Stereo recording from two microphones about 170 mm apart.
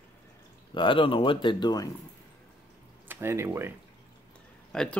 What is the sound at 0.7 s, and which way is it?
Speech, 30° left (ahead or behind).